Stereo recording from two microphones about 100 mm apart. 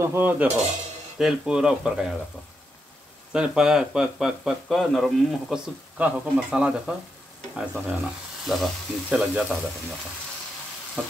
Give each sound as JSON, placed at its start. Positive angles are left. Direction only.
{"t": 0.0, "sound": "stir", "side_deg": -20}
{"t": 1.1, "sound": "speech", "side_deg": -5}
{"t": 3.3, "sound": "speech", "side_deg": -5}
{"t": 5.9, "sound": "speech", "side_deg": -10}